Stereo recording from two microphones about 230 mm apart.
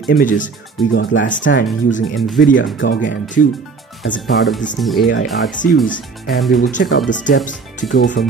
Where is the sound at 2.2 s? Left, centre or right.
Centre.